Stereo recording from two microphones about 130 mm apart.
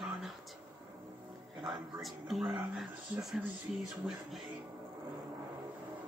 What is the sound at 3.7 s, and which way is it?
Speech, centre (ahead or behind).